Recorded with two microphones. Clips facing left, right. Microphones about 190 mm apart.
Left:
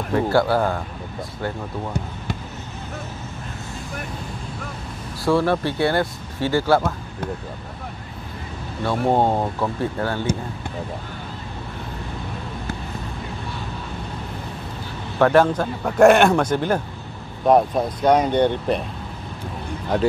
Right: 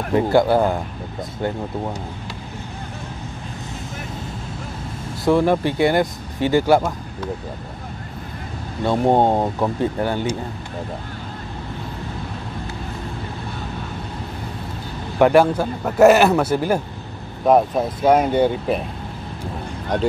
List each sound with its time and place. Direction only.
0.1 s speech: 20° right (ahead or behind)
5.2 s speech: 15° right (ahead or behind)
8.8 s speech: 20° right (ahead or behind)
15.1 s speech: 15° right (ahead or behind)
19.9 s speech: 5° left (ahead or behind)